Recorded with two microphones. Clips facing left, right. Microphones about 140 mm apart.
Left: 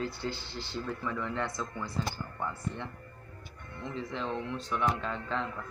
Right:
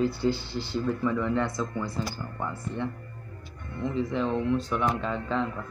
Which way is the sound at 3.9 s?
10° right (ahead or behind).